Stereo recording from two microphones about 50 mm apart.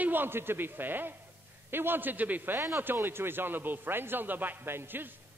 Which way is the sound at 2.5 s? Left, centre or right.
Right.